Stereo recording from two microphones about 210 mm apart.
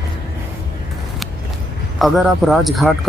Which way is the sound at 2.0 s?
Centre (ahead or behind).